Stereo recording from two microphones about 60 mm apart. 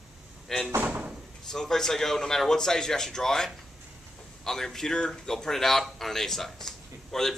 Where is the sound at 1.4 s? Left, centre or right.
Centre.